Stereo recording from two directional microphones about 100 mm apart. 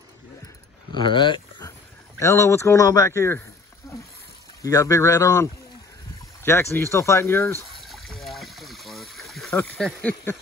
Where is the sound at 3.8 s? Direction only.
30° left (ahead or behind).